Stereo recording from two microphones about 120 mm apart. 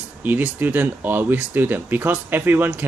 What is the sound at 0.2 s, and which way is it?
Speech, 15° right (ahead or behind).